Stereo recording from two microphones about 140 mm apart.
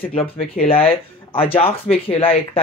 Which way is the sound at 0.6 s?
40° left (ahead or behind).